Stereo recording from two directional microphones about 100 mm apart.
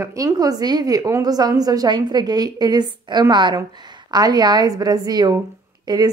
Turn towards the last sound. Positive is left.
turn(degrees=-40)  # may be behind; listen again after turning